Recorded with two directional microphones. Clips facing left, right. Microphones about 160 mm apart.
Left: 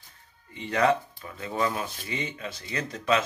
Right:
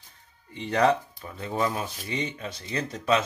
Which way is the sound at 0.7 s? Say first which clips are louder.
Right 1 dB; 35° right (ahead or behind).